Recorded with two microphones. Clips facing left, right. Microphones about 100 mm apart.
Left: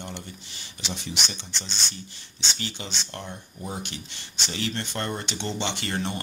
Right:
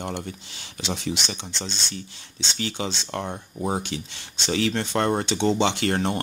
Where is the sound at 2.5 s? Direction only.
90° right.